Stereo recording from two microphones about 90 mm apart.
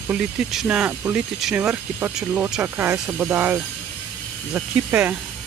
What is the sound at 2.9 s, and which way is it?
Speech, 10° right (ahead or behind).